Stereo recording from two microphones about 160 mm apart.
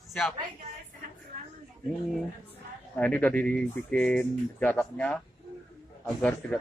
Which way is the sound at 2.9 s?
10° left (ahead or behind).